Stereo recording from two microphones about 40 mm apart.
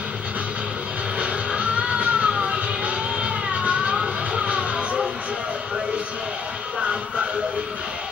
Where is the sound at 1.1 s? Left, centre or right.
Right.